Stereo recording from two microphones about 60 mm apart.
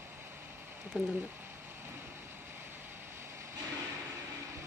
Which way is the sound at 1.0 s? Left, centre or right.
Right.